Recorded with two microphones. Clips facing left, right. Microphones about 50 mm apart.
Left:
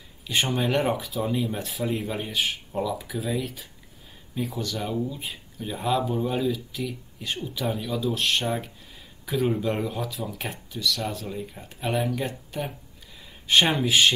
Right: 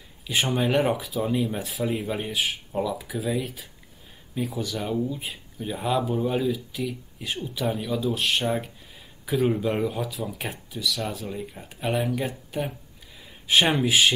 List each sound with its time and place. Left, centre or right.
0.3 s speech: centre